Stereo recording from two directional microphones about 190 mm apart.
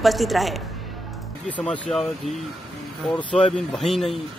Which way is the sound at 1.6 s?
5° left (ahead or behind).